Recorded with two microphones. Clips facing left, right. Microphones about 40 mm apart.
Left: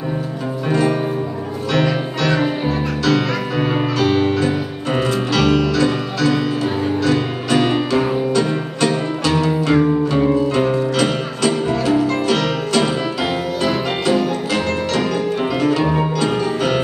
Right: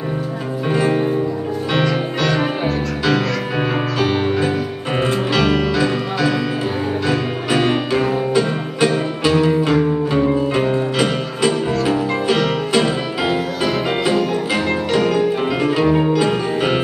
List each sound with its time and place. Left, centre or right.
0.7 s music: centre
2.4 s music: right
3.2 s music: centre
10.5 s music: centre
15.0 s music: centre